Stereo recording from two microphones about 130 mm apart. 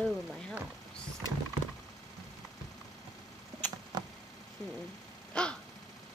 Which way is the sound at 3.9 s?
30° right (ahead or behind).